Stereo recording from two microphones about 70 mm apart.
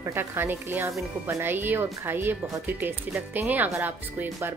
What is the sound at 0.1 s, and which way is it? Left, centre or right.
Speech, right.